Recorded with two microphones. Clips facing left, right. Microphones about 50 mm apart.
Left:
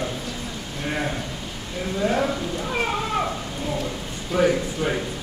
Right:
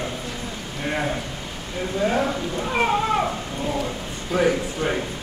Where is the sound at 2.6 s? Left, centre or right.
Centre.